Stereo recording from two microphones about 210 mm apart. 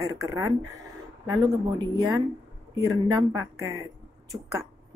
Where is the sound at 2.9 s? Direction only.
20° right (ahead or behind).